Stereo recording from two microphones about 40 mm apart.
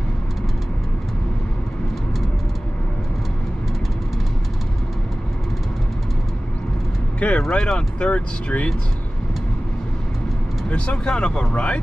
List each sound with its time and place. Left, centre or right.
7.2 s speech: left
10.7 s speech: left